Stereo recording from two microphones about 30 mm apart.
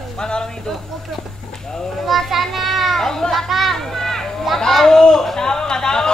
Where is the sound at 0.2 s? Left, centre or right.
Left.